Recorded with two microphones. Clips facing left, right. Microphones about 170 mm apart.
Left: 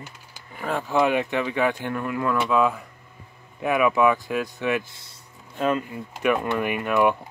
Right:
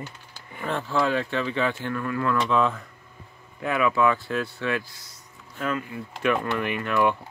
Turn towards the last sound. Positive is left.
turn(degrees=15)  # may be behind; listen again after turning